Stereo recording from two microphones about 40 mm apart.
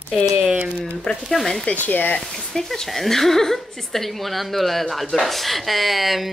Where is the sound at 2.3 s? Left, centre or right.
Centre.